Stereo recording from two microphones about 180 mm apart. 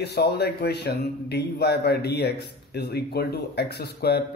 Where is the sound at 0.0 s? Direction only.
65° left (ahead or behind).